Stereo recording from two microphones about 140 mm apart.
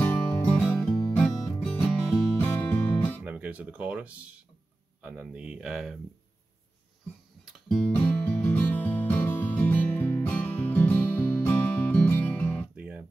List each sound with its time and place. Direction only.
0.0 s music: 10° left (ahead or behind)
3.3 s speech: 10° right (ahead or behind)
7.4 s music: 5° left (ahead or behind)
12.7 s music: 10° right (ahead or behind)